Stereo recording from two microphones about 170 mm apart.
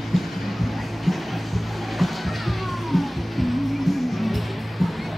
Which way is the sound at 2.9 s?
Centre (ahead or behind).